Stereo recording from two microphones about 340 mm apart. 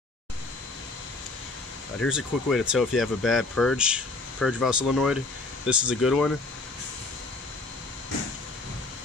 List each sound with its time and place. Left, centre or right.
2.0 s speech: centre